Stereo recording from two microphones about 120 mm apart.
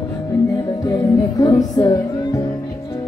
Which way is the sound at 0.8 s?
30° left (ahead or behind).